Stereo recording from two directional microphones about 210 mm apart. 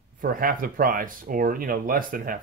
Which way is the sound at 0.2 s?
40° right (ahead or behind).